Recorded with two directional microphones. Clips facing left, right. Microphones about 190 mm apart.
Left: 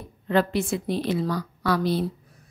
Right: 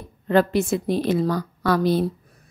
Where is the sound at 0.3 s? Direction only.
45° right (ahead or behind).